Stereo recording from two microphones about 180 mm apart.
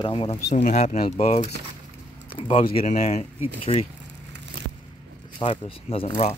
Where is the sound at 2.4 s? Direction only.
30° left (ahead or behind).